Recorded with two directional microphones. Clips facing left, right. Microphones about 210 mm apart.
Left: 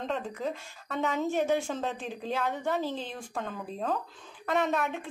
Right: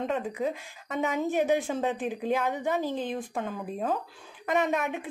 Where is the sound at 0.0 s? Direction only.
10° right (ahead or behind).